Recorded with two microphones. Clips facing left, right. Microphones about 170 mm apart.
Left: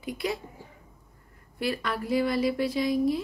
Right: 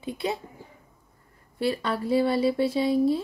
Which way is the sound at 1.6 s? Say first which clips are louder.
Right 3 dB; 30° right (ahead or behind).